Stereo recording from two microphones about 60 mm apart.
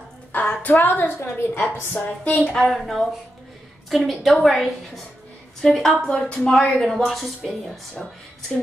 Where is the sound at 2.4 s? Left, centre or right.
Centre.